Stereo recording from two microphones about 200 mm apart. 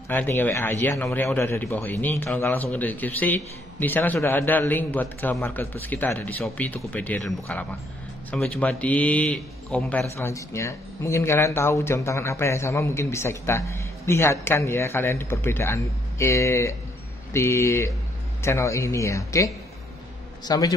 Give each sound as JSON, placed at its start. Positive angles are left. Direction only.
{"t": 0.1, "sound": "a man's voice", "side_deg": 10}